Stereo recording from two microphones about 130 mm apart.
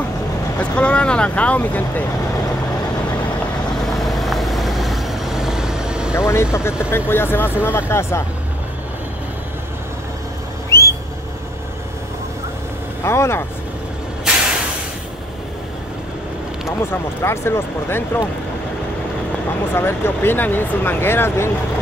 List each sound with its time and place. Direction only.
0.6 s speech: 10° left (ahead or behind)
3.8 s vehicle: centre (ahead or behind)
6.1 s speech: 20° left (ahead or behind)
10.7 s a sound: 20° left (ahead or behind)
13.0 s speech: 20° left (ahead or behind)
16.6 s speech: 20° left (ahead or behind)
19.7 s speech: 15° left (ahead or behind)